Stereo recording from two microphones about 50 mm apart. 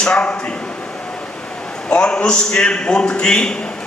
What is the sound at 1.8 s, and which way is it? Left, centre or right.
A man's voice, centre.